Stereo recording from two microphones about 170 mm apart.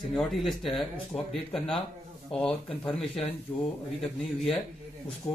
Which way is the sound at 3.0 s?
35° left (ahead or behind).